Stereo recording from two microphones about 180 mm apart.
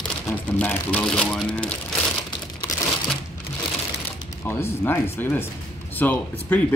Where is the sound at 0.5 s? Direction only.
10° left (ahead or behind).